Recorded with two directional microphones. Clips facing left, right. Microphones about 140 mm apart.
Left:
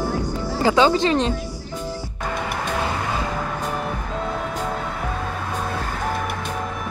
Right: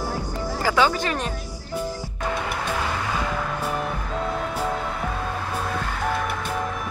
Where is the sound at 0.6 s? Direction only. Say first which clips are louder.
Left 5 dB; 20° left (ahead or behind).